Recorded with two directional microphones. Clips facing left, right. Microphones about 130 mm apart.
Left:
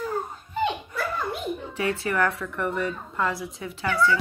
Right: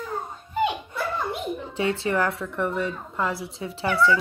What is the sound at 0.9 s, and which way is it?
A child's voice, 25° right (ahead or behind).